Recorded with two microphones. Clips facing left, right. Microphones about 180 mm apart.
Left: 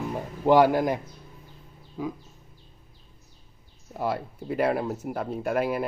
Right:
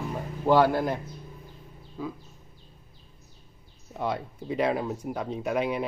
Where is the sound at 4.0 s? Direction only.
5° left (ahead or behind).